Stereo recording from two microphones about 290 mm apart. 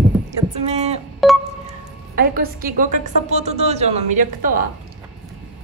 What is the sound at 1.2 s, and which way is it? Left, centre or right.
Speech, centre.